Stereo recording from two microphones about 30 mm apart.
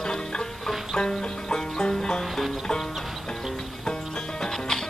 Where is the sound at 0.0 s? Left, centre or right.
Left.